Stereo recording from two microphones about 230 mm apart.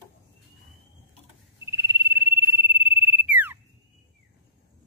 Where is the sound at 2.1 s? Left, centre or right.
Centre.